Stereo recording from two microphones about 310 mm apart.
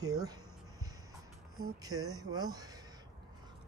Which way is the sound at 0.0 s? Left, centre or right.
Centre.